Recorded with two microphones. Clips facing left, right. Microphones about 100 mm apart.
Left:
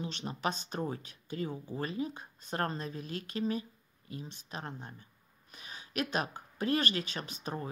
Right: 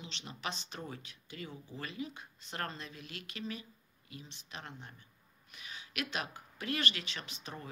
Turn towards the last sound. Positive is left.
turn(degrees=40)  # may be behind; listen again after turning